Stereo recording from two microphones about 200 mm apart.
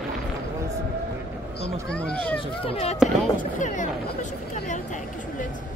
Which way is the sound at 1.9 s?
5° left (ahead or behind).